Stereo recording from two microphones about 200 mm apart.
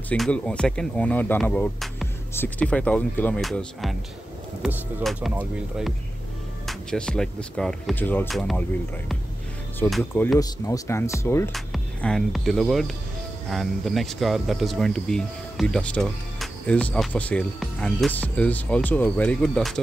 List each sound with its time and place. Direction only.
0.1 s speech: 5° left (ahead or behind)
9.8 s speech: 5° left (ahead or behind)
10.4 s speech: 15° left (ahead or behind)
11.5 s speech: centre (ahead or behind)